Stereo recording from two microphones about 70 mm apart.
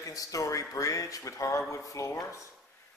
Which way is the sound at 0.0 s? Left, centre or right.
Left.